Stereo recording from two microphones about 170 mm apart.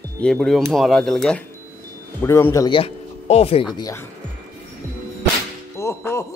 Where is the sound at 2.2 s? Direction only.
15° left (ahead or behind).